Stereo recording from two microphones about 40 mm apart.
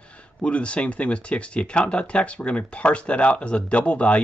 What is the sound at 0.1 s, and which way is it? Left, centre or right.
Speech, left.